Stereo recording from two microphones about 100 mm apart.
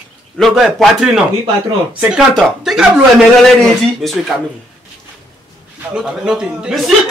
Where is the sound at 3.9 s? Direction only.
Centre (ahead or behind).